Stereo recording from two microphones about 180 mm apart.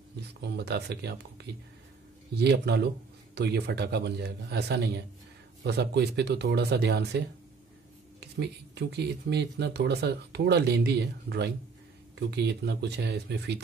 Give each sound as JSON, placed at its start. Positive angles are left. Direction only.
{"t": 0.4, "sound": "speech", "side_deg": -65}